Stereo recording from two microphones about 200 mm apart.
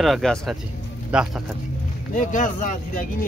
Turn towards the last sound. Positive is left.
turn(degrees=40)  # may be behind; listen again after turning